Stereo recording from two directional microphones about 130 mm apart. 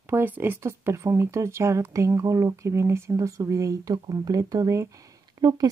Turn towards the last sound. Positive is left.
turn(degrees=-30)  # may be behind; listen again after turning